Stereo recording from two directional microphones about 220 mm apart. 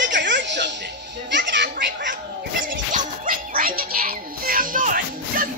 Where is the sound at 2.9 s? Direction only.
40° right (ahead or behind).